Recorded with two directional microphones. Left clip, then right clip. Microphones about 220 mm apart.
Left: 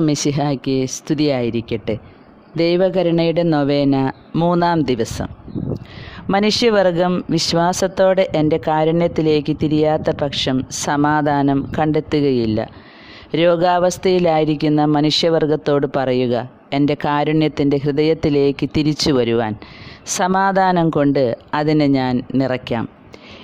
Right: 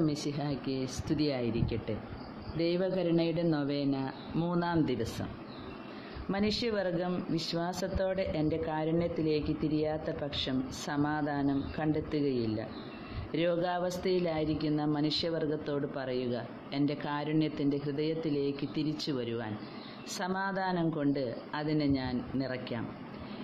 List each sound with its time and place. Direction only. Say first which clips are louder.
0.0 s speech: left 15 dB; 45° left (ahead or behind)
6.3 s speech: left 18 dB; 50° left (ahead or behind)